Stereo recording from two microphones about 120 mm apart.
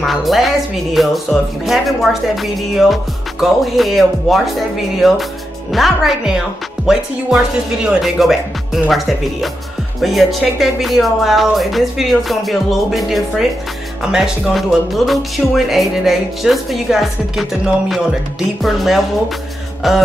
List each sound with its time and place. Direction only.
0.0 s speech: centre (ahead or behind)